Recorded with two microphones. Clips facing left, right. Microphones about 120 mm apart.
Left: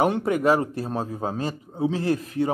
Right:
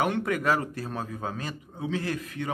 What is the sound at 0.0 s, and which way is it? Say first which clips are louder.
A man's voice: left 5 dB; 30° left (ahead or behind).